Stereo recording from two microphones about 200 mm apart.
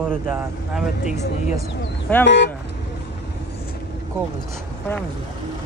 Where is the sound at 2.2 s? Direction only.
60° left (ahead or behind).